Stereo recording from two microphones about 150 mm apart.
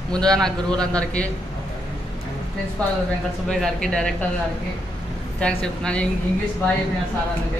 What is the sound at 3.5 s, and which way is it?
Speech, 5° left (ahead or behind).